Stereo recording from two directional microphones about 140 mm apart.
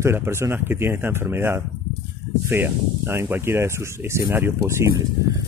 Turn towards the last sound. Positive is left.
turn(degrees=-20)  # may be behind; listen again after turning